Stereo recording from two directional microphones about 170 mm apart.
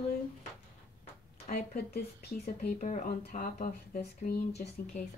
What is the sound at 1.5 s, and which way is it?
Speech, 65° left (ahead or behind).